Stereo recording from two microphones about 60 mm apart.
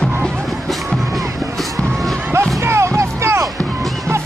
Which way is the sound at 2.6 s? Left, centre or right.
Right.